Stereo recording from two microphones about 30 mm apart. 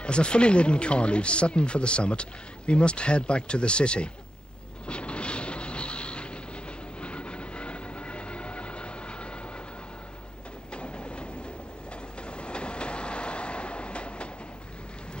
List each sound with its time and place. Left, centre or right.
0.0 s speech: left
4.8 s vehicle: left
10.7 s train: left